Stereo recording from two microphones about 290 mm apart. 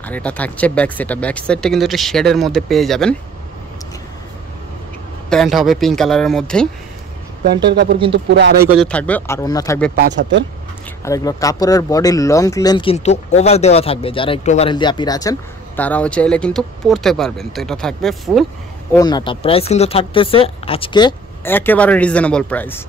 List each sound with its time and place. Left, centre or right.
0.0 s speech: centre
5.3 s speech: centre
7.4 s speech: right
8.6 s speech: centre
9.9 s speech: right
11.1 s speech: centre
18.9 s speech: centre